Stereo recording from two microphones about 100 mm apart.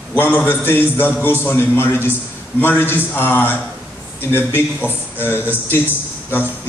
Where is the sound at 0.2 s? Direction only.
20° left (ahead or behind).